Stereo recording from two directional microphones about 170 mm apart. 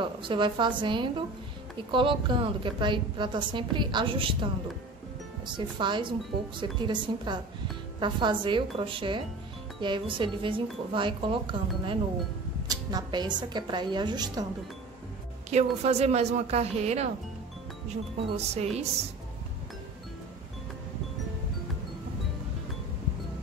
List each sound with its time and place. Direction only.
0.0 s a woman's voice: 30° right (ahead or behind)
5.6 s a woman's voice: 25° right (ahead or behind)
15.5 s speech: 40° right (ahead or behind)
18.3 s speech: 40° right (ahead or behind)